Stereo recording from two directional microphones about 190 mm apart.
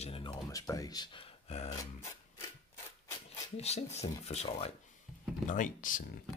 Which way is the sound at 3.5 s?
35° left (ahead or behind).